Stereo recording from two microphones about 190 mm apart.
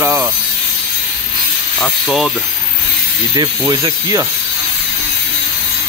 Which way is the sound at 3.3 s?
20° right (ahead or behind).